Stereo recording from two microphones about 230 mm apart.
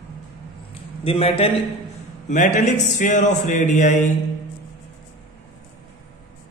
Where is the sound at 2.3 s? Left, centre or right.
Left.